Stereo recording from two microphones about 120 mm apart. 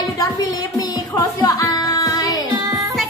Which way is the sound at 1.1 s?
30° left (ahead or behind).